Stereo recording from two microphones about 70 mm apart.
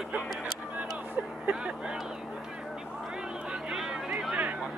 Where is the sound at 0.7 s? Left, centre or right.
Right.